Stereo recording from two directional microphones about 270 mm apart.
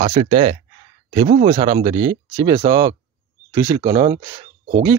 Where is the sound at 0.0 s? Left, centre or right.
Right.